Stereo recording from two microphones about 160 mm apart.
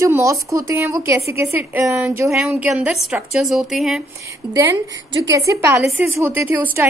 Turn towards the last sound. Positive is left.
turn(degrees=-10)  # may be behind; listen again after turning